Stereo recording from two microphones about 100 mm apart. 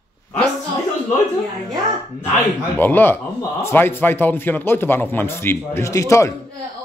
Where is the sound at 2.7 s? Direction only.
20° left (ahead or behind).